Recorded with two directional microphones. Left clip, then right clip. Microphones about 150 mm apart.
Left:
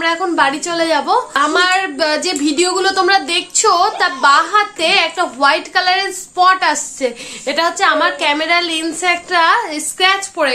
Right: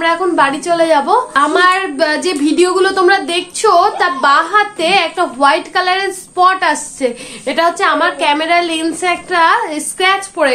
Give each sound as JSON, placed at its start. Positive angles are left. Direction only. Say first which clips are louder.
{"t": 0.0, "sound": "a woman's voice", "louder": "right 2 dB", "side_deg": 25}